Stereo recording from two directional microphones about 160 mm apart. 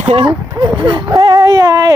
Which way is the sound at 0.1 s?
25° right (ahead or behind).